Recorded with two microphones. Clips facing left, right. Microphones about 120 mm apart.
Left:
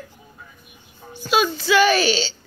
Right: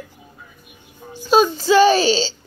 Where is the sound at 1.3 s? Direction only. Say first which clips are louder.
Right 5 dB; 35° right (ahead or behind).